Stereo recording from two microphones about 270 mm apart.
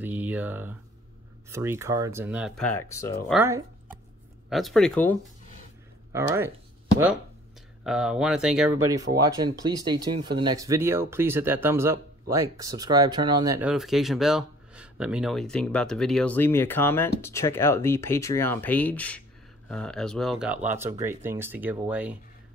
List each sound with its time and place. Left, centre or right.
0.0 s a sound: centre
1.5 s speech: centre
3.3 s speech: centre
6.1 s speech: centre
7.8 s speech: centre
9.3 s speech: centre